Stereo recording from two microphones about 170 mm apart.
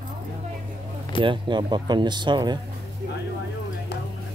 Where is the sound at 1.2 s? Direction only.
25° right (ahead or behind).